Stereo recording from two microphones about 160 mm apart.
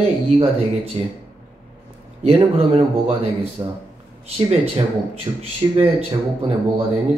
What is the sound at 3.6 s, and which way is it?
Speech, 25° right (ahead or behind).